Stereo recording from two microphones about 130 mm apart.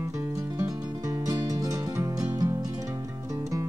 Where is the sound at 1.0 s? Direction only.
30° right (ahead or behind).